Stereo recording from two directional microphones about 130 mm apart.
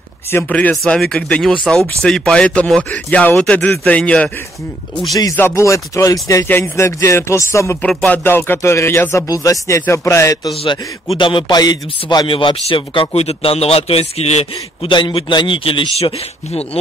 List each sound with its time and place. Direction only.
0.3 s speech: 15° left (ahead or behind)
5.1 s speech: 25° left (ahead or behind)
7.8 s speech: 10° left (ahead or behind); by 10.5 s 25° left (ahead or behind)
10.5 s speech: 45° left (ahead or behind)